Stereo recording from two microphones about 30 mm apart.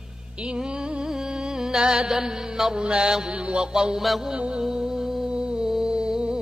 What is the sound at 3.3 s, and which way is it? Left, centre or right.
Mantra, right.